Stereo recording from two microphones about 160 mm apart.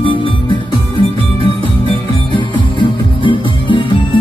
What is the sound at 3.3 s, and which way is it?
Music, 30° left (ahead or behind).